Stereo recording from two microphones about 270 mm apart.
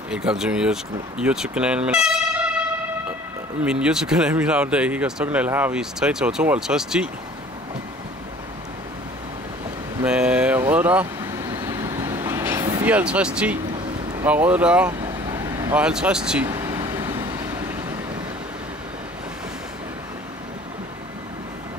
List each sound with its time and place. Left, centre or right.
0.1 s speech: centre
3.6 s speech: centre
10.0 s speech: centre
11.5 s vehicle: centre
14.2 s speech: centre
16.4 s vehicle: centre